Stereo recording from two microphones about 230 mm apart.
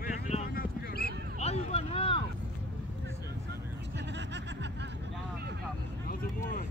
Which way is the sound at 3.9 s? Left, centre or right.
Right.